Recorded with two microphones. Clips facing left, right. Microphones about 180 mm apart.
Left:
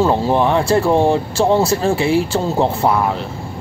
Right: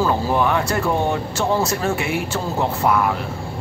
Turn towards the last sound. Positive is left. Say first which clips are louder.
# left 3 dB
turn(degrees=30)  # may be behind; listen again after turning